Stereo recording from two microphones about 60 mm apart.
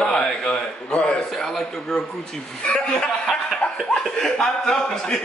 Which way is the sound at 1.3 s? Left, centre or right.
Centre.